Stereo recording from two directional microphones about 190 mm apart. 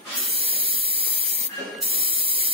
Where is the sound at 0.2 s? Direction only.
30° right (ahead or behind).